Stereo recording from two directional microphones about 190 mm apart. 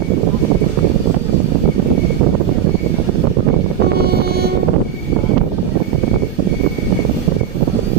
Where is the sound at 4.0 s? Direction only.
55° right (ahead or behind).